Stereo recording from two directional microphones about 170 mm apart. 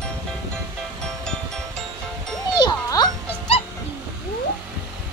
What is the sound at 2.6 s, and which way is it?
Music, 25° left (ahead or behind).